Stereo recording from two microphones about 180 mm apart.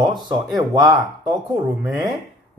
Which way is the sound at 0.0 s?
25° right (ahead or behind).